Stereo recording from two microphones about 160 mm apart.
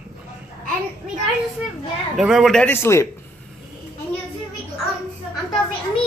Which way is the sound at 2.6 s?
15° left (ahead or behind).